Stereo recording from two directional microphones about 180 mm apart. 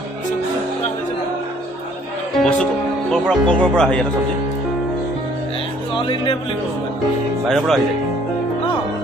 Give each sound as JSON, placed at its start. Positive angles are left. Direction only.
{"t": 2.4, "sound": "speech", "side_deg": 5}
{"t": 5.9, "sound": "speech", "side_deg": 30}
{"t": 7.4, "sound": "speech", "side_deg": 0}